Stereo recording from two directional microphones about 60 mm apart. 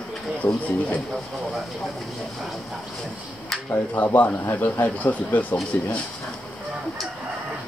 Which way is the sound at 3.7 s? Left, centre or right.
Left.